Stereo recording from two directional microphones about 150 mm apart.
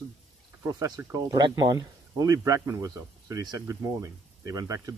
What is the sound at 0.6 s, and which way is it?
Speech, 25° right (ahead or behind).